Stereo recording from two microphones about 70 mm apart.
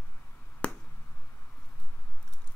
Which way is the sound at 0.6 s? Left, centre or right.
Centre.